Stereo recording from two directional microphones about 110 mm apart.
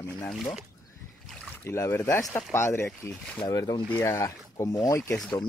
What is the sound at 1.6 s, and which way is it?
Speech, 25° left (ahead or behind).